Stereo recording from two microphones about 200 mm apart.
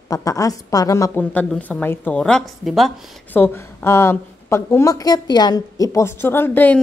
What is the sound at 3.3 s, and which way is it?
A woman's voice, 10° left (ahead or behind).